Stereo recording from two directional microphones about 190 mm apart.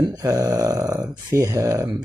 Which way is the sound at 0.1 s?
20° right (ahead or behind).